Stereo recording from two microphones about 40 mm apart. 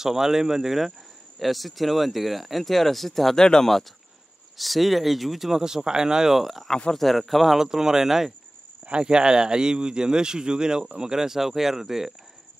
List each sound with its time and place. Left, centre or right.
0.0 s speech: centre
5.6 s speech: centre
6.3 s speech: centre
7.5 s speech: centre
8.8 s a man's voice: right; by 12.1 s centre